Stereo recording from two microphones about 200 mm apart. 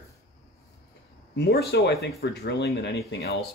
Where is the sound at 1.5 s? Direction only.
50° left (ahead or behind).